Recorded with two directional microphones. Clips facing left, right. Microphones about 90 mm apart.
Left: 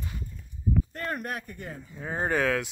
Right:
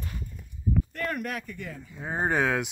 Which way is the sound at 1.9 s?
5° right (ahead or behind).